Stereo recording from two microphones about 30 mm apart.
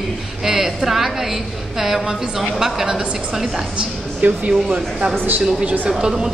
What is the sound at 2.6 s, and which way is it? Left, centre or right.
Speech, centre.